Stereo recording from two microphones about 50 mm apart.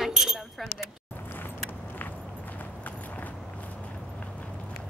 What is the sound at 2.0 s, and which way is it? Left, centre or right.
Walk, left.